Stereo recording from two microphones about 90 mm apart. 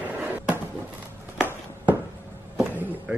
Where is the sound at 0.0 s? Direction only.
20° right (ahead or behind).